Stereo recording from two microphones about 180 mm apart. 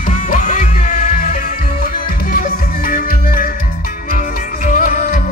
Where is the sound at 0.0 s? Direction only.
45° left (ahead or behind).